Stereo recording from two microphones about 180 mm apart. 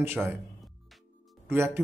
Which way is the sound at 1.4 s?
15° right (ahead or behind).